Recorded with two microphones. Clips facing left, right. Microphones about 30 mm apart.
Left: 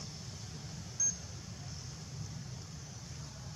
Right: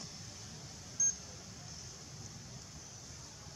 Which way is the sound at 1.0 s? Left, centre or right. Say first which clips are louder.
Even; centre.